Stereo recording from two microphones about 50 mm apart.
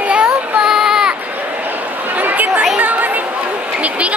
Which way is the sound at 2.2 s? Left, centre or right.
Right.